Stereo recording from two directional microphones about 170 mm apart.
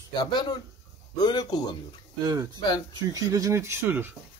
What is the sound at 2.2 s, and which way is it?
Speech, 20° right (ahead or behind).